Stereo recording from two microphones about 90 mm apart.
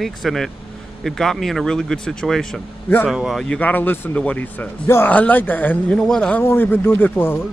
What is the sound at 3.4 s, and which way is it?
A man's voice, 15° left (ahead or behind).